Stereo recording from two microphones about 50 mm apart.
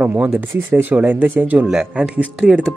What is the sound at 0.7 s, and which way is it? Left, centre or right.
Speech, right.